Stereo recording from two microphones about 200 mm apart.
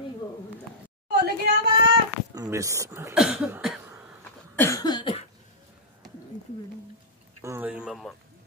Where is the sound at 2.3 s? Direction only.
15° right (ahead or behind).